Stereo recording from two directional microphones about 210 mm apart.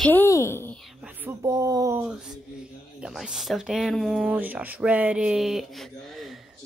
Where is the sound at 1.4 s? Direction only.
15° right (ahead or behind).